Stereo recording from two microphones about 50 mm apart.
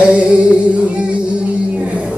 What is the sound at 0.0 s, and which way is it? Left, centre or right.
Music, right.